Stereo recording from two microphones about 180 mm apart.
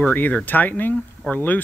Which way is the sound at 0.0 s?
10° left (ahead or behind).